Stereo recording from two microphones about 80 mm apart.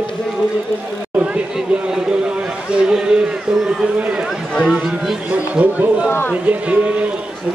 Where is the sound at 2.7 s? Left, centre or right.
Centre.